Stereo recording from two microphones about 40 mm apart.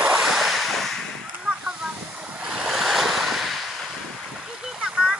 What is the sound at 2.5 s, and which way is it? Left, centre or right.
Waves, centre.